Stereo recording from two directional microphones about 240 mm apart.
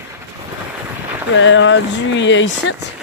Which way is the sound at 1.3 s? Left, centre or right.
Left.